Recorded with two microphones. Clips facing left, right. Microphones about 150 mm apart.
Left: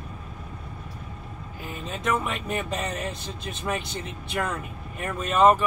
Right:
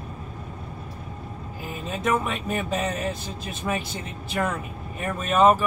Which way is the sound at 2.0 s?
Centre (ahead or behind).